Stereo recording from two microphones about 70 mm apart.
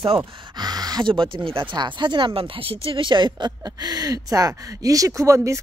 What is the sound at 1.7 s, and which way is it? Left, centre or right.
Speech, right.